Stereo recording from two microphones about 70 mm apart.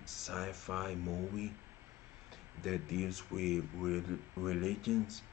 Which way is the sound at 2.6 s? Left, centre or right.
Centre.